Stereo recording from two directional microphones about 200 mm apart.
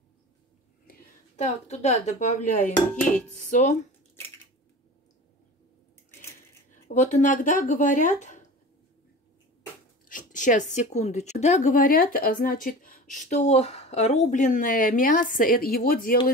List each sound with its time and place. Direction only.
0.8 s whispering: 45° left (ahead or behind)
1.7 s speech: 35° left (ahead or behind)
6.9 s speech: 40° left (ahead or behind)
10.0 s speech: 40° left (ahead or behind)